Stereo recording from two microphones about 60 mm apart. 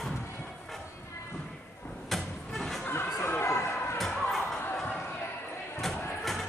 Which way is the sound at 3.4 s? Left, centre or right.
Left.